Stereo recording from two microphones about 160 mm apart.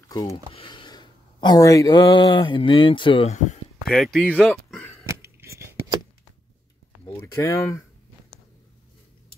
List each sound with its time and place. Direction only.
0.1 s speech: 25° left (ahead or behind)
0.5 s a sound: 35° left (ahead or behind)
3.9 s speech: centre (ahead or behind)
5.0 s scissors: 15° right (ahead or behind)
7.1 s speech: 15° left (ahead or behind)